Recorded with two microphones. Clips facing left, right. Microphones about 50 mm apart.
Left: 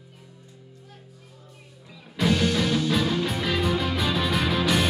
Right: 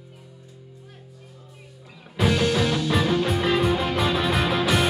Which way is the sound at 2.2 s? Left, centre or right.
Centre.